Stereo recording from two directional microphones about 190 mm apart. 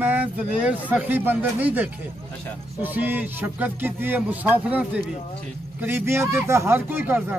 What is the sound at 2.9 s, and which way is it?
A man's voice, 10° right (ahead or behind).